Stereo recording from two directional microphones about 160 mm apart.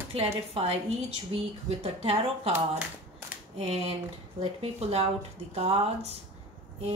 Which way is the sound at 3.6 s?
40° right (ahead or behind).